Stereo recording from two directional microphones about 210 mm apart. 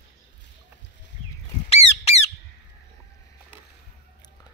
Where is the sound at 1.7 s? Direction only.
30° left (ahead or behind).